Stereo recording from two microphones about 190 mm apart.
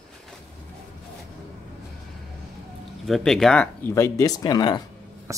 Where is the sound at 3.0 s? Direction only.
Centre (ahead or behind); by 4.8 s 20° left (ahead or behind).